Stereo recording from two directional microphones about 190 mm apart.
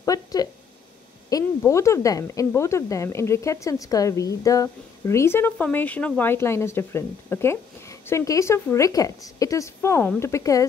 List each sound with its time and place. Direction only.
0.0 s speech: 20° left (ahead or behind)